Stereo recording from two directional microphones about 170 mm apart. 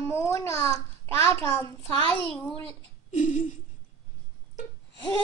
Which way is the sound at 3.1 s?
45° left (ahead or behind).